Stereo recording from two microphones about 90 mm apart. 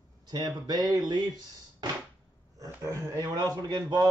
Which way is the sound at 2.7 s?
30° right (ahead or behind).